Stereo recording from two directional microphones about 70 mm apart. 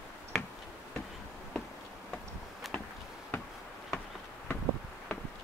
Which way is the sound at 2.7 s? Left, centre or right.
Centre.